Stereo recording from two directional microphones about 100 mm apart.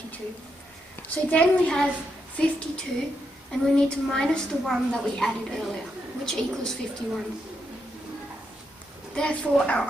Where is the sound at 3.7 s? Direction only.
5° left (ahead or behind).